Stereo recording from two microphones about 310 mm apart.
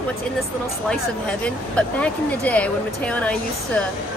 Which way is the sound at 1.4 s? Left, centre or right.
Centre.